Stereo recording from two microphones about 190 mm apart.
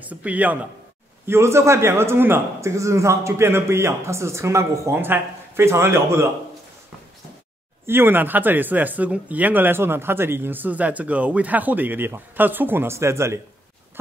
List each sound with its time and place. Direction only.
0.0 s speech: 10° right (ahead or behind)
7.8 s speech: 10° right (ahead or behind)